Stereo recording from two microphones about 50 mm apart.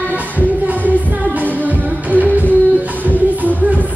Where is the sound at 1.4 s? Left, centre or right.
Right.